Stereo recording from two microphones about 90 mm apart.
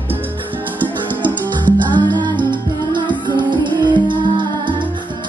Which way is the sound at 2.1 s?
50° right (ahead or behind).